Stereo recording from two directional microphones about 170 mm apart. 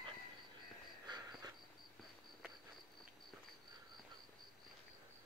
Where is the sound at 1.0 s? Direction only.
25° right (ahead or behind).